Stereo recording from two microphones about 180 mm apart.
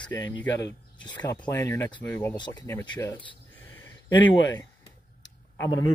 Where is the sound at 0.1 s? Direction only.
25° left (ahead or behind).